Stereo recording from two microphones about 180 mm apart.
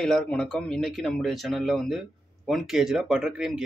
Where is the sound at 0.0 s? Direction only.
5° left (ahead or behind).